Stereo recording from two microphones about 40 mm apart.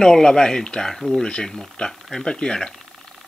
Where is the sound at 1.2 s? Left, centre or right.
Centre.